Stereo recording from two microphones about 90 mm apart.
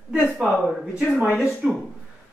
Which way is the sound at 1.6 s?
10° right (ahead or behind).